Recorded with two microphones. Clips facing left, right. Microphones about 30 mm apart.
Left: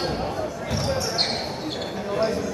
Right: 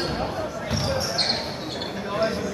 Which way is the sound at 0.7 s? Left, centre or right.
Right.